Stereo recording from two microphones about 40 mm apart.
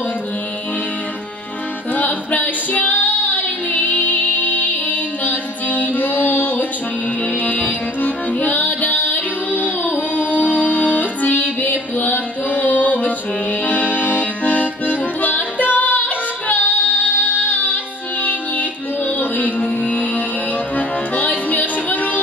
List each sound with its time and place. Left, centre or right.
2.0 s female singing: left
7.4 s music: left
13.7 s accordion: left
18.2 s music: left